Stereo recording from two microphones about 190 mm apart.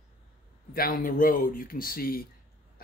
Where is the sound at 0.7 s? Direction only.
50° left (ahead or behind).